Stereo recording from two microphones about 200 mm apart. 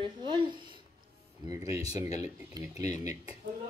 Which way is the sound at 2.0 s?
35° left (ahead or behind).